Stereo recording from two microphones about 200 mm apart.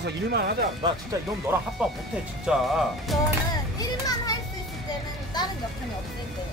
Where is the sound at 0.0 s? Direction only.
50° right (ahead or behind).